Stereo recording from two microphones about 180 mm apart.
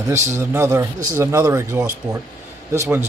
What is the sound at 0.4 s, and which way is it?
Speech, 15° right (ahead or behind).